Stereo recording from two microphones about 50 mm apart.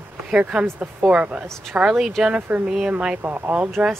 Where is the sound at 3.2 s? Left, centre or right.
Right.